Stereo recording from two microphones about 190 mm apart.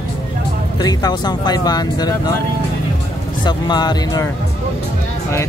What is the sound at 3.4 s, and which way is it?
Speech, 25° left (ahead or behind).